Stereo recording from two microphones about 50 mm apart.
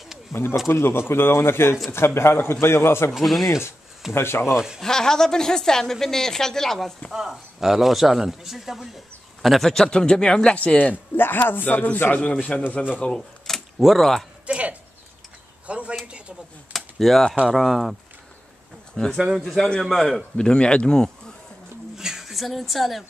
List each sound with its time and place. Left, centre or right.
0.3 s speech: left
3.1 s speech: centre
4.1 s speech: left
4.6 s speech: centre
4.8 s a woman's voice: centre
7.1 s speech: centre; by 10.9 s left
10.9 s a man's voice: left
13.7 s speech: centre
14.4 s speech: right
16.7 s a sound: centre
17.5 s speech: centre
19.1 s speech: centre
20.2 s a woman's voice: centre
21.9 s a woman's voice: centre